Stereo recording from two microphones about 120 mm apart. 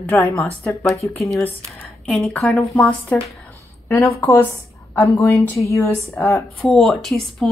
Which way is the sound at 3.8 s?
20° left (ahead or behind).